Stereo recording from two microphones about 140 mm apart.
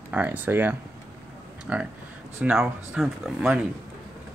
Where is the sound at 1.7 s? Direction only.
10° right (ahead or behind).